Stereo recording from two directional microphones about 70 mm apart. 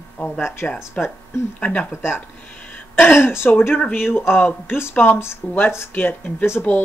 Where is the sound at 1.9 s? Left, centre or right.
Left.